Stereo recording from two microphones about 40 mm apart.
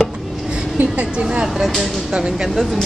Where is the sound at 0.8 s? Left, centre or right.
Right.